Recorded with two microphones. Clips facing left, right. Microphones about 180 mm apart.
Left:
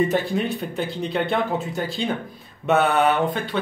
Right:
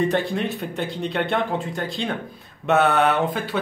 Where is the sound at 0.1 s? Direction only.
Centre (ahead or behind).